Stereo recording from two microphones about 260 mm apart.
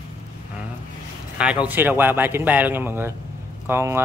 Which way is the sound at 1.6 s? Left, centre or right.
Centre.